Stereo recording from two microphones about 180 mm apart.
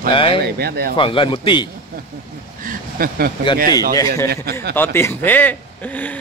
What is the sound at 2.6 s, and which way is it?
Speech, 50° right (ahead or behind).